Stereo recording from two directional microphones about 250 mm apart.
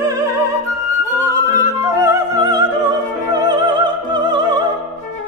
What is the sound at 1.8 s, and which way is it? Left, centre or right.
Opera, centre.